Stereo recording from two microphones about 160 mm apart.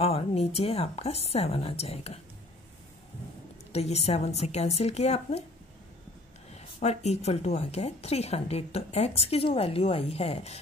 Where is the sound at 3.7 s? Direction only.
40° left (ahead or behind).